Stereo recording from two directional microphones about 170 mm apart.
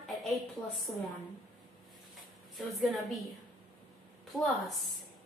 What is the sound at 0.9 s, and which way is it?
Speech, 20° left (ahead or behind).